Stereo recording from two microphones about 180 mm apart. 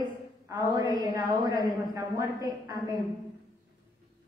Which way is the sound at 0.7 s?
20° right (ahead or behind).